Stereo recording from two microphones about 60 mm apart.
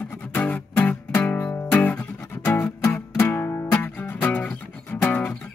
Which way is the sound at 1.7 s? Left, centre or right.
Left.